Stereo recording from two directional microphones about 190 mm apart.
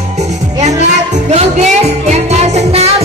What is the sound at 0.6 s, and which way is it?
Music, 35° right (ahead or behind).